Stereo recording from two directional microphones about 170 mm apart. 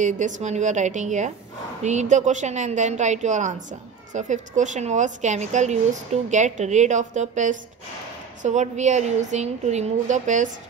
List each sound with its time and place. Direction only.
0.0 s a woman's voice: 45° right (ahead or behind)